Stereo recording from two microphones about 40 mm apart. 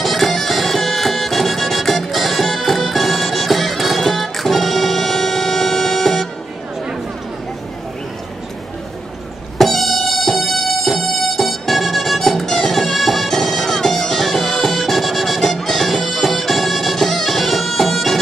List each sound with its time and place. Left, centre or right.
0.0 s music: centre
9.6 s music: centre